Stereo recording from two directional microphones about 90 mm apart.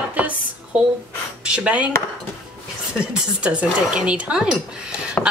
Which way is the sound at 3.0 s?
10° right (ahead or behind).